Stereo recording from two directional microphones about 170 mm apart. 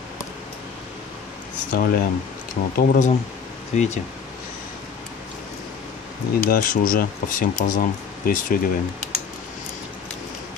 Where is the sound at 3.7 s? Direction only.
45° left (ahead or behind).